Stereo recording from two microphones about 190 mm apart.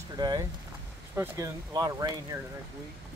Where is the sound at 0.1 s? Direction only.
20° right (ahead or behind).